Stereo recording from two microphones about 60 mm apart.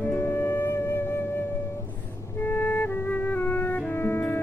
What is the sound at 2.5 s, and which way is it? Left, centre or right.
Music, left.